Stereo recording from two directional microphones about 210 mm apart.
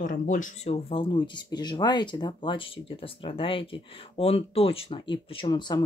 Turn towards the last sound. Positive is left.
turn(degrees=20)  # may be behind; listen again after turning